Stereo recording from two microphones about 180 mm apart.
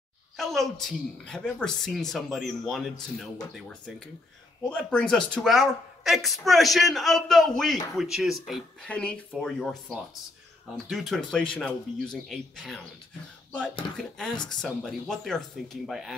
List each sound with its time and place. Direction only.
0.4 s a woman's voice: centre (ahead or behind)
13.9 s a woman's voice: 5° left (ahead or behind)